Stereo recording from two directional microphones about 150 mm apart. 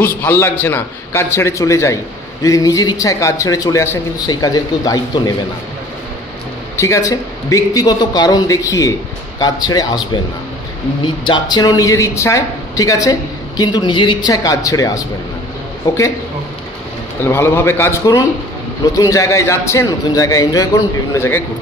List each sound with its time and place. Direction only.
0.0 s a man's voice: 15° left (ahead or behind)
6.8 s a woman's voice: 20° left (ahead or behind)
11.2 s a woman's voice: 30° left (ahead or behind)
17.2 s a man's voice: 15° left (ahead or behind)